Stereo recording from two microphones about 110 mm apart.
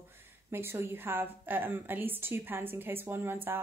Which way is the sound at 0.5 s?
20° right (ahead or behind).